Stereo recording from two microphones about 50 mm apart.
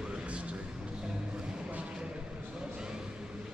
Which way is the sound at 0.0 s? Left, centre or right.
Centre.